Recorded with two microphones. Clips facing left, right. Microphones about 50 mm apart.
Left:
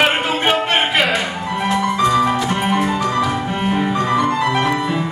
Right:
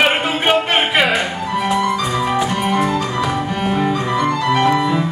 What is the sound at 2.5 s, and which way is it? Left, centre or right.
Music, centre.